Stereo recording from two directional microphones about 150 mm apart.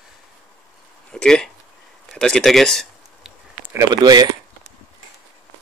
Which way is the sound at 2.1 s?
5° left (ahead or behind).